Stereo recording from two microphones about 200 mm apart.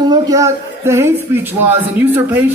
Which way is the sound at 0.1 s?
15° right (ahead or behind).